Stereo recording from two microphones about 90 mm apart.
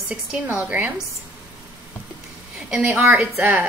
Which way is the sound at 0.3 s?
15° right (ahead or behind).